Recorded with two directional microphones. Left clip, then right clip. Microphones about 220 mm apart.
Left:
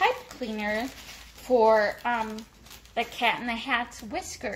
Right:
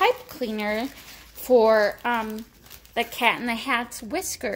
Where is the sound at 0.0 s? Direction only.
45° right (ahead or behind).